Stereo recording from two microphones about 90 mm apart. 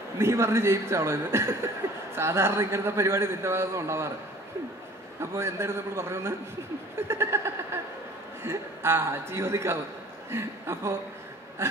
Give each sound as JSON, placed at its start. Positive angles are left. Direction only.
{"t": 0.2, "sound": "a man's voice", "side_deg": -30}
{"t": 5.2, "sound": "a man's voice", "side_deg": -30}